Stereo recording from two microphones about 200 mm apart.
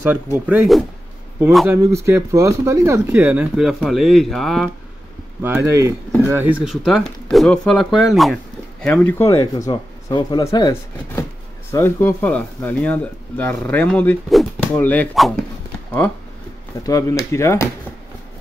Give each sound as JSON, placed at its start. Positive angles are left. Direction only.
{"t": 0.5, "sound": "speech", "side_deg": -5}
{"t": 1.7, "sound": "speech", "side_deg": -15}
{"t": 5.4, "sound": "speech", "side_deg": -10}
{"t": 16.8, "sound": "speech", "side_deg": 15}